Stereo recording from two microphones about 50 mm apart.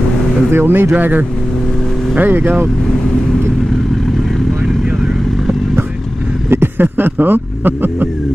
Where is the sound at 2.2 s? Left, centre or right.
Right.